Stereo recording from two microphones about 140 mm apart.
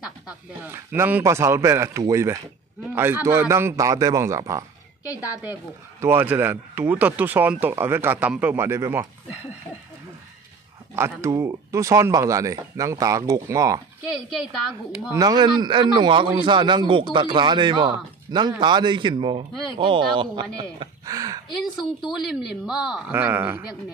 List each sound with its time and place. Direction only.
0.0 s speech: 15° right (ahead or behind)
11.0 s speech: 20° right (ahead or behind)
14.1 s speech: centre (ahead or behind)
15.1 s a man's voice: 30° right (ahead or behind)
22.1 s speech: 5° right (ahead or behind)
23.1 s speech: 15° right (ahead or behind)